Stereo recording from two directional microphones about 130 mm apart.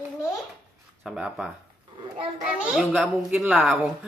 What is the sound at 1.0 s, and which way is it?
Speech, 5° right (ahead or behind).